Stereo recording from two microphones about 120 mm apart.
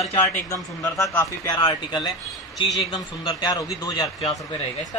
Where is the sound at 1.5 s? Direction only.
35° left (ahead or behind).